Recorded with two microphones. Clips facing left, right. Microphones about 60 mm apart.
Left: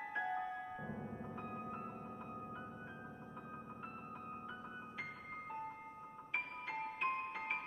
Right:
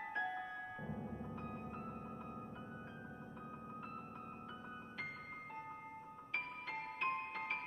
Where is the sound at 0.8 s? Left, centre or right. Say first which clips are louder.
Even; left.